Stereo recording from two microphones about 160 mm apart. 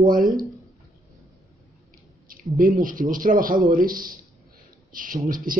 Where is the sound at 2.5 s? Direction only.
55° right (ahead or behind).